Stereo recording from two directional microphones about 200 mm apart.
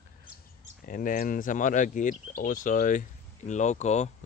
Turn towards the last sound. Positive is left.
turn(degrees=35)  # may be behind; listen again after turning